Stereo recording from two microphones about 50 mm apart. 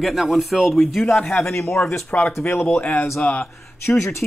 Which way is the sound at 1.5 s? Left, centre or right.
Left.